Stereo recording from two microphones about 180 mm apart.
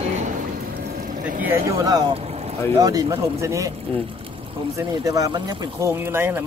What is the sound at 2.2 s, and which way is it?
Boat, 35° right (ahead or behind).